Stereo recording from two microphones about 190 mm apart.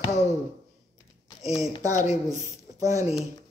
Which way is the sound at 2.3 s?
15° right (ahead or behind).